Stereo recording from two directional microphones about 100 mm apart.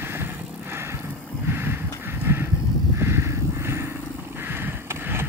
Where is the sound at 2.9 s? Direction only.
25° right (ahead or behind).